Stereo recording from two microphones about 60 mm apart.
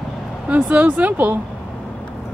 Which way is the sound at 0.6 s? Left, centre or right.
Right.